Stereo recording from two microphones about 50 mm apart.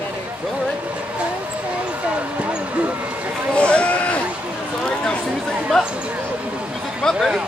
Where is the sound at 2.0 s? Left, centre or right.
Right.